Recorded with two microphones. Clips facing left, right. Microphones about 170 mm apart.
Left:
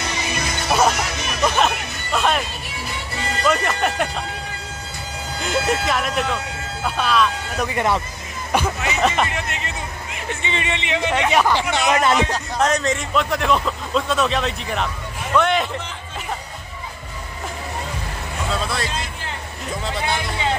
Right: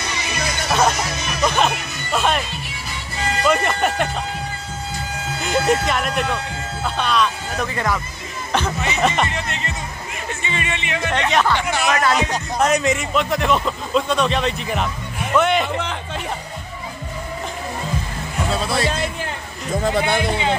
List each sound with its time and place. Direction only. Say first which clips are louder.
0.7 s music: even; 5° left (ahead or behind)
1.4 s speech: even; centre (ahead or behind)
3.4 s a man's voice: right 1 dB; centre (ahead or behind)
5.4 s a man's voice: right 3 dB; centre (ahead or behind)
7.6 s speech: left 3 dB; 20° left (ahead or behind)
8.5 s a man's voice: even; 10° left (ahead or behind)
11.7 s speech: left 1 dB; 20° left (ahead or behind)
12.3 s a man's voice: right 1 dB; 10° right (ahead or behind)
15.7 s speech: right 5 dB; 70° right (ahead or behind)
19.8 s speech: right 6 dB; 55° right (ahead or behind)